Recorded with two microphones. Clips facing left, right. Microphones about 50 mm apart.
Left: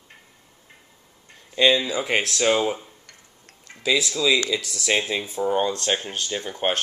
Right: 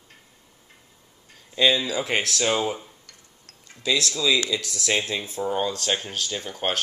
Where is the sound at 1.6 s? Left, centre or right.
Centre.